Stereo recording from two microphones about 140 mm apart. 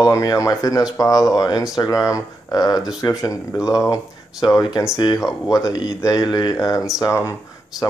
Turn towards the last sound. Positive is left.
turn(degrees=20)  # may be behind; listen again after turning